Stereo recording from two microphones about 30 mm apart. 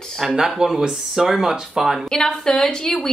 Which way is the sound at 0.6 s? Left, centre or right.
Centre.